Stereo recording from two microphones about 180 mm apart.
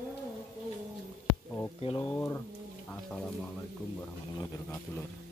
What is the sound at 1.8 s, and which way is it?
Speech, 30° left (ahead or behind).